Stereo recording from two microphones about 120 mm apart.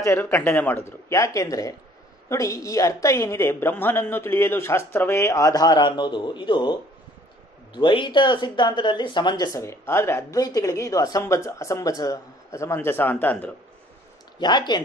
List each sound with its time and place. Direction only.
0.0 s a woman's voice: 20° left (ahead or behind); by 9.6 s 35° left (ahead or behind)
9.6 s a woman's voice: 25° left (ahead or behind)
14.4 s speech: 40° left (ahead or behind)